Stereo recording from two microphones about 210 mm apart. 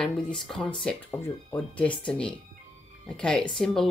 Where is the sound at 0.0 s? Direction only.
Centre (ahead or behind).